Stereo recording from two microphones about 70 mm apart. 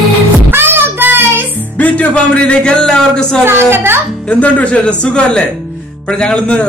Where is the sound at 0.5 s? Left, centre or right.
Right.